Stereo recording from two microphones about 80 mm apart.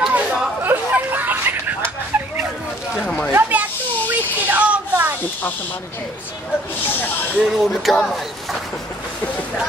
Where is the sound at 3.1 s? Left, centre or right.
Centre.